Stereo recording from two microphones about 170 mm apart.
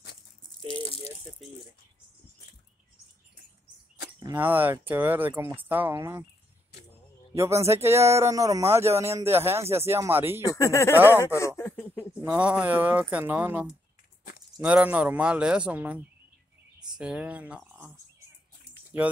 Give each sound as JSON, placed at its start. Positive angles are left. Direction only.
{"t": 0.7, "sound": "speech", "side_deg": 35}
{"t": 1.4, "sound": "speech", "side_deg": 0}
{"t": 4.2, "sound": "speech", "side_deg": -15}
{"t": 7.3, "sound": "speech", "side_deg": -15}
{"t": 10.5, "sound": "speech", "side_deg": 20}
{"t": 11.0, "sound": "speech", "side_deg": -15}
{"t": 11.3, "sound": "a sound", "side_deg": 15}
{"t": 11.9, "sound": "speech", "side_deg": -5}